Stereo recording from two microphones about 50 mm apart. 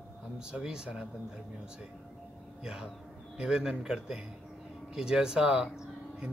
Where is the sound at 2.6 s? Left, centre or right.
Centre.